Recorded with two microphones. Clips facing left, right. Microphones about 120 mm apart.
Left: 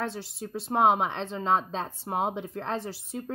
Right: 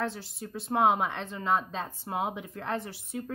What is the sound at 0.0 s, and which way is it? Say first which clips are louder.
Speech: left 1 dB; 25° left (ahead or behind).